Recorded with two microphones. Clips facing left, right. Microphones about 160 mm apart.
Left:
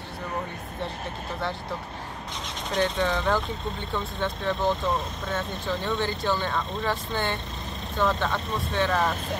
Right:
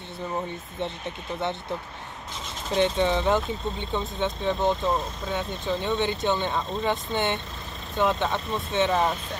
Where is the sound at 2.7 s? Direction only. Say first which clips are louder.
Right 3 dB; 25° right (ahead or behind).